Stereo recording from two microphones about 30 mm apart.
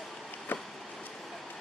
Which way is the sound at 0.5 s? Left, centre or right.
Left.